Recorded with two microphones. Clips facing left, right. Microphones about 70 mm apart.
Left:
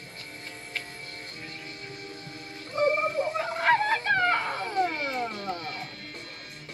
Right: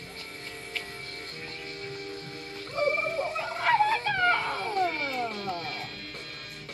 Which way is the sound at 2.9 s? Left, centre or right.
Left.